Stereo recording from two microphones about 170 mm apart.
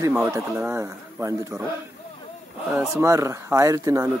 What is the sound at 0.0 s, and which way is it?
Speech, 15° right (ahead or behind).